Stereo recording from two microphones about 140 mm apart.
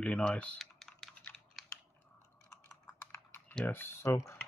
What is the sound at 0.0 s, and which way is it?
Typing, 5° left (ahead or behind).